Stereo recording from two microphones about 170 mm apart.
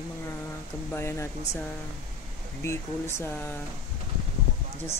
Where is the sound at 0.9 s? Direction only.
15° left (ahead or behind).